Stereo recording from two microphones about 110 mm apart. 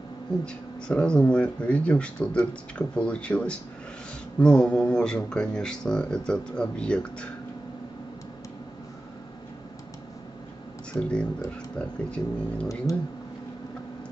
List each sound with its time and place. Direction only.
0.5 s speech: 10° left (ahead or behind)
10.9 s speech: 10° left (ahead or behind)
12.9 s speech: 30° left (ahead or behind)